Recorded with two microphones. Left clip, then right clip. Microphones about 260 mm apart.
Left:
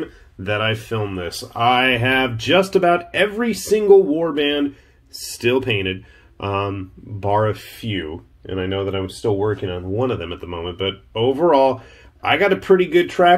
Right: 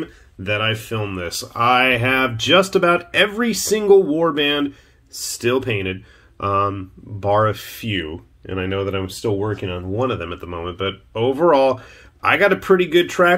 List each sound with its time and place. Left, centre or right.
0.4 s speech: centre
5.4 s speech: centre